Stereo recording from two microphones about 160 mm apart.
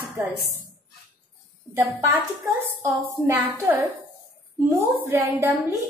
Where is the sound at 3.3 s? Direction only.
10° right (ahead or behind).